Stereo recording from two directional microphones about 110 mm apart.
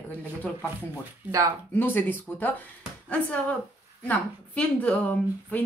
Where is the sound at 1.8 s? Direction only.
20° left (ahead or behind).